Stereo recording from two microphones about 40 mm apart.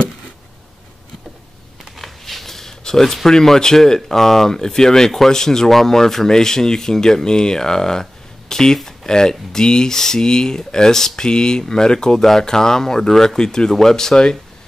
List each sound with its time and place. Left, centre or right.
2.0 s speech: centre